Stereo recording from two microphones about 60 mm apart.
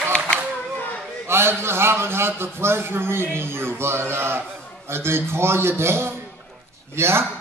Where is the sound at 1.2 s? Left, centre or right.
Right.